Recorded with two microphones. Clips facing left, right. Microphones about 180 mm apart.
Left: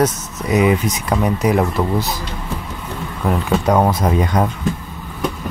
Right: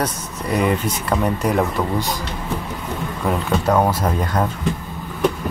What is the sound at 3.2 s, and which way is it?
Speech, 5° left (ahead or behind).